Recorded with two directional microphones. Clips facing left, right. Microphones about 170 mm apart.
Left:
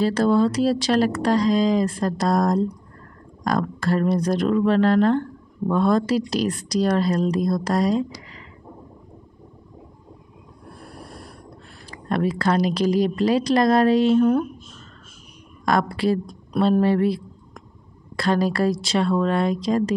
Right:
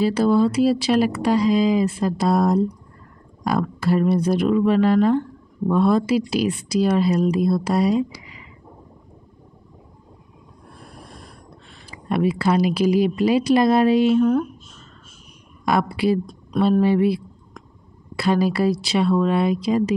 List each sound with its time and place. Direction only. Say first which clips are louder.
0.0 s speech: right 1 dB; 5° right (ahead or behind)
11.9 s speech: right 2 dB; 5° right (ahead or behind)
15.6 s speech: right 1 dB; 5° right (ahead or behind)